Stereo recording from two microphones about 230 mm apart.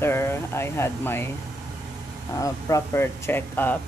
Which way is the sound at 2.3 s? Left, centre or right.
Centre.